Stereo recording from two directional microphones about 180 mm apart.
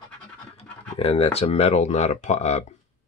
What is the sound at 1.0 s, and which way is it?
Speech, 35° left (ahead or behind).